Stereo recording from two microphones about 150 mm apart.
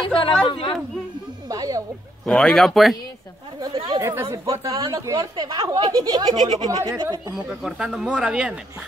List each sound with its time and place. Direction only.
0.0 s a sound: 35° left (ahead or behind)
0.5 s speech: 35° left (ahead or behind)
1.5 s a sound: 25° right (ahead or behind)
2.2 s speech: 5° left (ahead or behind)
3.6 s speech: 30° right (ahead or behind)
4.0 s speech: 15° right (ahead or behind)
7.3 s speech: 5° right (ahead or behind)